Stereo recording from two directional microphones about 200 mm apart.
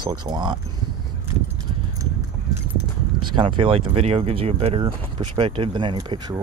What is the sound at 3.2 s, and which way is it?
Speech, 25° right (ahead or behind).